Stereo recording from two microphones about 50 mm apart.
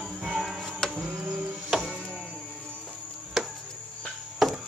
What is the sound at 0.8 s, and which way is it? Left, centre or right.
Music, centre.